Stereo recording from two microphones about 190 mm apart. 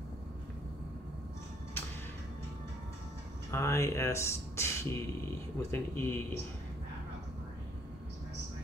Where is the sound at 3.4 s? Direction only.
15° left (ahead or behind).